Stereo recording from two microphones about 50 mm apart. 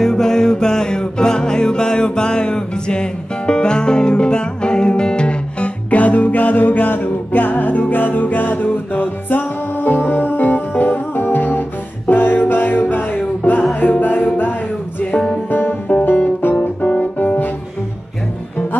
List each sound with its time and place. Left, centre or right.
0.0 s music: centre; by 13.2 s left
13.4 s music: left
15.9 s music: left